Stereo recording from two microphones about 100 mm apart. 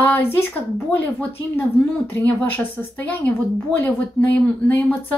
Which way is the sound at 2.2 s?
15° left (ahead or behind).